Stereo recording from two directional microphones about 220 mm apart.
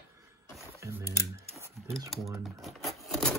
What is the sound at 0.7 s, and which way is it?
Speech, 15° right (ahead or behind).